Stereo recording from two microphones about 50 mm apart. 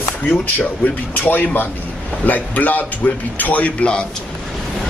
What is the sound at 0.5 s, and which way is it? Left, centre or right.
A man's voice, left.